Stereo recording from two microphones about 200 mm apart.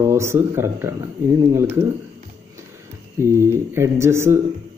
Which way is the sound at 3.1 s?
15° right (ahead or behind).